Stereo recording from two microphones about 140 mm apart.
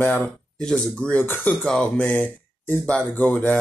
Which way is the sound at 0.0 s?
10° left (ahead or behind).